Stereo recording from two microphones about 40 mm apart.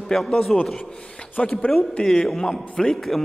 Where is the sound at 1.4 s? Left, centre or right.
Left.